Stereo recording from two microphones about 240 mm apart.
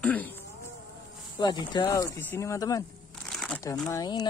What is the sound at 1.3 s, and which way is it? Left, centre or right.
Speech, centre.